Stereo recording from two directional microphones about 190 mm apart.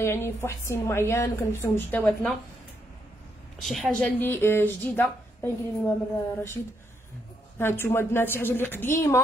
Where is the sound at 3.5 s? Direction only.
Centre (ahead or behind).